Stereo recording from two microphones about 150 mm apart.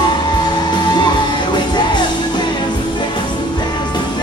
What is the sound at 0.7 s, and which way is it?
Music, 30° left (ahead or behind).